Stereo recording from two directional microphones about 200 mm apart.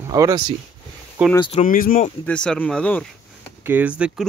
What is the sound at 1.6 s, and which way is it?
Speech, 45° left (ahead or behind).